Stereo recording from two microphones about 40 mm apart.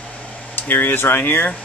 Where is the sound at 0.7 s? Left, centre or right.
Left.